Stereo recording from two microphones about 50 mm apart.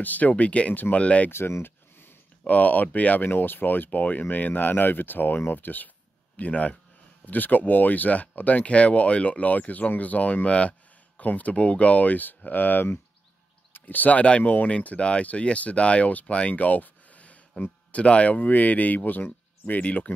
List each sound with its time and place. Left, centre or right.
0.0 s speech: left
1.6 s a sound: left
2.4 s speech: left
3.3 s speech: left
6.3 s speech: left